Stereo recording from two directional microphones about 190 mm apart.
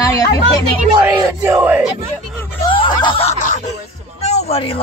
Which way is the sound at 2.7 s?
25° left (ahead or behind).